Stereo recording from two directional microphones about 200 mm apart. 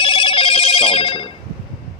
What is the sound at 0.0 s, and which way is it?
Telephone bell ringing, 25° left (ahead or behind).